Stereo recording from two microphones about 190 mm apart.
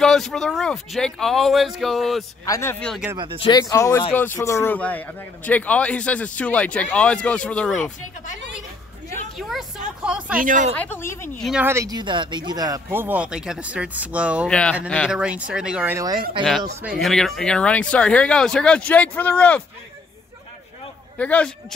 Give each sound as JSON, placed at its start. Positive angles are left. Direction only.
{"t": 0.0, "sound": "speech", "side_deg": 0}
{"t": 2.4, "sound": "a man's voice", "side_deg": 15}
{"t": 3.3, "sound": "a man's voice", "side_deg": 20}
{"t": 9.4, "sound": "a sound", "side_deg": 0}
{"t": 10.4, "sound": "speech", "side_deg": -40}
{"t": 10.8, "sound": "a man's voice", "side_deg": 10}
{"t": 11.4, "sound": "speech", "side_deg": -5}
{"t": 11.7, "sound": "speech", "side_deg": -20}
{"t": 14.5, "sound": "a man's voice", "side_deg": 5}
{"t": 15.1, "sound": "speech", "side_deg": -5}
{"t": 16.8, "sound": "a man's voice", "side_deg": 0}
{"t": 21.2, "sound": "a man's voice", "side_deg": 5}